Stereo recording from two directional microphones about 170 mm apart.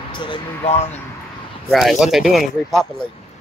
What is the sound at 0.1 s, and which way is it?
Speech, 30° left (ahead or behind).